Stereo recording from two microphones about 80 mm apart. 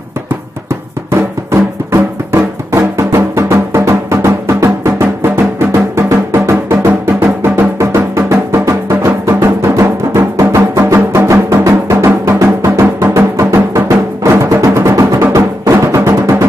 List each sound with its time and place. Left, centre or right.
1.1 s music: right
11.5 s music: right